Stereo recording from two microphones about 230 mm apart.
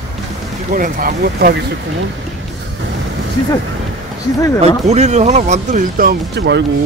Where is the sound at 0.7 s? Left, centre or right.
Right.